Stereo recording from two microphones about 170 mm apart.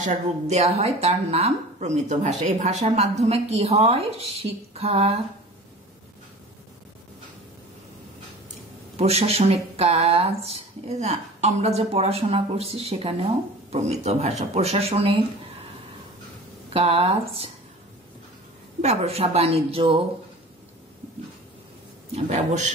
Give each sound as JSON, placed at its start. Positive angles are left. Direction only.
{"t": 0.0, "sound": "speech", "side_deg": -45}
{"t": 8.9, "sound": "speech", "side_deg": -35}
{"t": 16.7, "sound": "speech", "side_deg": -35}
{"t": 18.8, "sound": "speech", "side_deg": -40}
{"t": 22.1, "sound": "a man's voice", "side_deg": -45}